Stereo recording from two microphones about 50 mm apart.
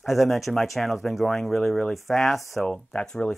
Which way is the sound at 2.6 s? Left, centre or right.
Centre.